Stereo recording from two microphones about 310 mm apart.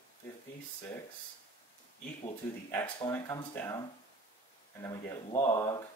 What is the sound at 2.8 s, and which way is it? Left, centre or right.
Speech, centre.